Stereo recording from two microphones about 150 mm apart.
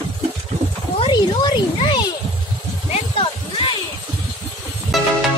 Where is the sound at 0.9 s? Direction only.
30° left (ahead or behind).